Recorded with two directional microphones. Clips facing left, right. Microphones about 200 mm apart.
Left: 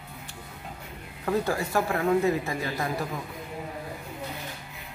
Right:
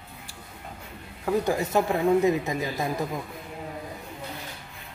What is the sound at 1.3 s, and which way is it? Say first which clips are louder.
Speech: right 2 dB; 20° right (ahead or behind).